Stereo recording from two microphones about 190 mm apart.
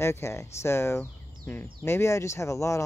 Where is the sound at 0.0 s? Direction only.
15° left (ahead or behind).